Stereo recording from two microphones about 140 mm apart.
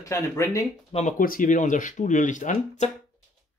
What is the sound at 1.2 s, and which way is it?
Speech, 80° left.